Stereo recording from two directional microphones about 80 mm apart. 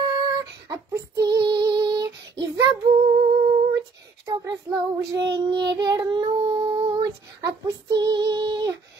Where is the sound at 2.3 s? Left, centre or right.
Right.